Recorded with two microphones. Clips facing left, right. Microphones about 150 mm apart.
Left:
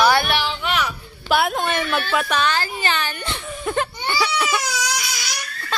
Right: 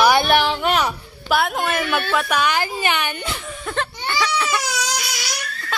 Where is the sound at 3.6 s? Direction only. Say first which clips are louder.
Left 4 dB; 10° left (ahead or behind).